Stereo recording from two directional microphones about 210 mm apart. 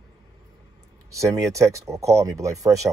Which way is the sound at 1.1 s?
15° right (ahead or behind).